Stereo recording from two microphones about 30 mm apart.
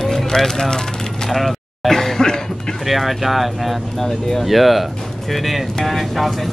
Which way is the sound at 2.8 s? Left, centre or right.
Centre.